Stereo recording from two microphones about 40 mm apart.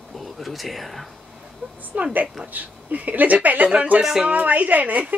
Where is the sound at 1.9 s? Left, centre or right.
Right.